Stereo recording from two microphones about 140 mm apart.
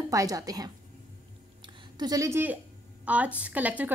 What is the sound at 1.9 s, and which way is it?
A woman's voice, 25° right (ahead or behind).